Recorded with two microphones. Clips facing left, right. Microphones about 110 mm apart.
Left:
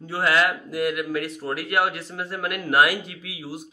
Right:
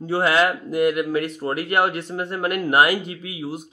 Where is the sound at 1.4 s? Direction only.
50° right (ahead or behind).